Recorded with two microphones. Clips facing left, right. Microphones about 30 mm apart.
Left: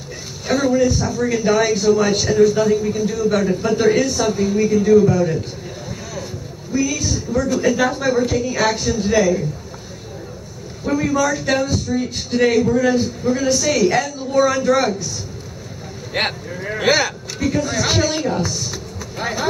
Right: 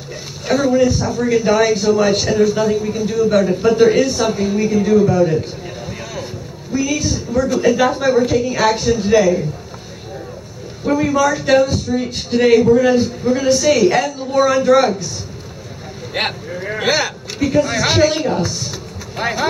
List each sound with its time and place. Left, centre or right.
0.5 s a man's voice: centre
6.7 s a man's voice: centre
10.8 s a man's voice: centre
16.1 s a man's voice: centre
19.1 s speech: right